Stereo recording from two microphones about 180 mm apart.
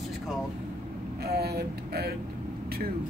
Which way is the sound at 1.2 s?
60° right (ahead or behind).